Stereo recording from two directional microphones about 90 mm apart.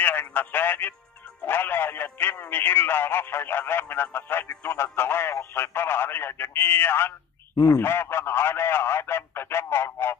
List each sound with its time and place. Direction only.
0.0 s speech: 25° left (ahead or behind)
7.5 s speech: 40° left (ahead or behind)
7.8 s speech: 25° left (ahead or behind)